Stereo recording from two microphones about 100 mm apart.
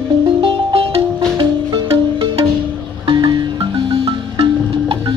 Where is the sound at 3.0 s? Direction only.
50° right (ahead or behind).